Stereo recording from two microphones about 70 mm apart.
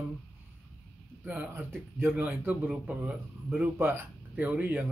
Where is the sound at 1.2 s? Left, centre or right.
Right.